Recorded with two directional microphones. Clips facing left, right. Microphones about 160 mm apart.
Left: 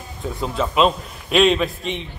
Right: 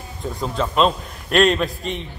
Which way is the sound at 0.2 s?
Centre (ahead or behind).